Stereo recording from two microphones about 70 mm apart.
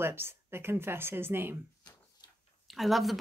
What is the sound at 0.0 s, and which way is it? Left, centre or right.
Speech, right.